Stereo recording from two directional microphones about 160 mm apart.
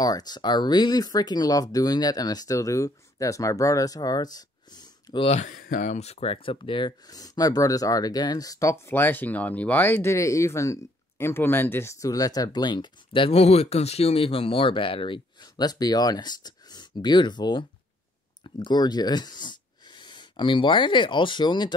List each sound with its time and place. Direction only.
0.0 s speech: 25° left (ahead or behind)
5.3 s speech: 55° left (ahead or behind); by 21.7 s 30° left (ahead or behind)